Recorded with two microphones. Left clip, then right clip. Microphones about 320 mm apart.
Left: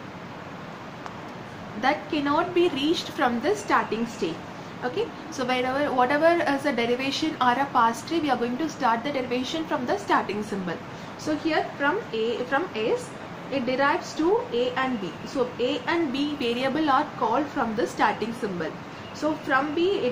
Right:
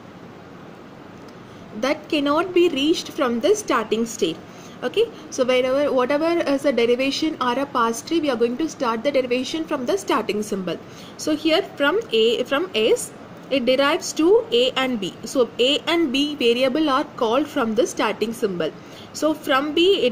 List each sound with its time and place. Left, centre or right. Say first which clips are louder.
1.8 s a woman's voice: right 3 dB; right